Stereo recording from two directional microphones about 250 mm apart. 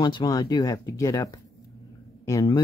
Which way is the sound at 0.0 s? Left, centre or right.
Centre.